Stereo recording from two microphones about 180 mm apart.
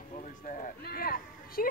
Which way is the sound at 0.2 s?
45° left (ahead or behind).